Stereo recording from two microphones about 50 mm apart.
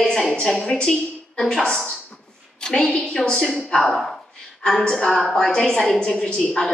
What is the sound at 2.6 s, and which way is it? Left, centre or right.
A woman's voice, centre.